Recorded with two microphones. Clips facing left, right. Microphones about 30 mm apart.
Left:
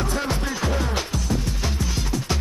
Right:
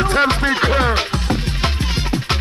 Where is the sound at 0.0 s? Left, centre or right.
Right.